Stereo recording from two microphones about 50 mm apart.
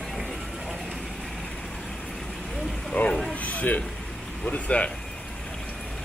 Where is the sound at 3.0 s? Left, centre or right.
Left.